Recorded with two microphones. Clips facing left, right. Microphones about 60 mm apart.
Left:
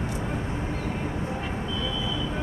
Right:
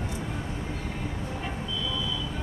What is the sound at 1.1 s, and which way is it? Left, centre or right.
Vehicle, left.